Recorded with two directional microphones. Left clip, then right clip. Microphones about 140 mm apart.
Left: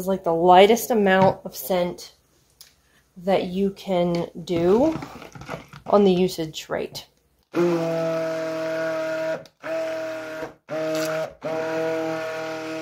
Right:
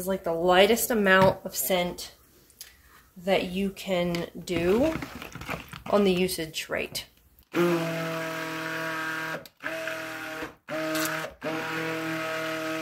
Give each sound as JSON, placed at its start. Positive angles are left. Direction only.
{"t": 0.0, "sound": "speech", "side_deg": 40}
{"t": 0.9, "sound": "speech", "side_deg": 25}
{"t": 3.3, "sound": "speech", "side_deg": 35}
{"t": 5.0, "sound": "speech", "side_deg": -10}
{"t": 5.9, "sound": "speech", "side_deg": 35}
{"t": 7.5, "sound": "a sound", "side_deg": -10}